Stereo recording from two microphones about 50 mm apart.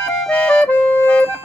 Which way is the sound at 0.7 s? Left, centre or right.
Left.